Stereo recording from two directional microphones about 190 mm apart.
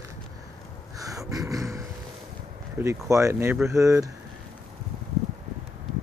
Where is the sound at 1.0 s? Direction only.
15° right (ahead or behind).